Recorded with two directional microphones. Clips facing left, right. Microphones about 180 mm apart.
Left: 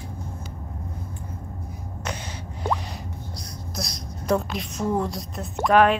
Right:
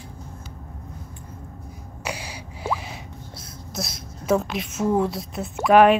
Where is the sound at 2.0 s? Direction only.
10° right (ahead or behind).